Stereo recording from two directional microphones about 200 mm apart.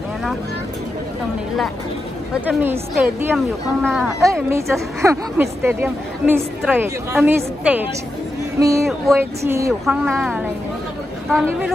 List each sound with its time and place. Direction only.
2.4 s a woman's voice: 10° right (ahead or behind)
4.2 s a woman's voice: 15° right (ahead or behind)
8.8 s a woman's voice: centre (ahead or behind)
9.4 s a woman's voice: 15° right (ahead or behind)
9.8 s a woman's voice: centre (ahead or behind)